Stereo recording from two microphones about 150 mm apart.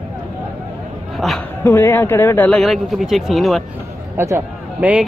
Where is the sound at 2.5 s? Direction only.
Centre (ahead or behind).